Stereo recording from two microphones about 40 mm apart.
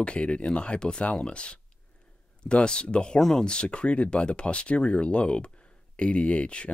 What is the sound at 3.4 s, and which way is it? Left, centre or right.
Speech, left.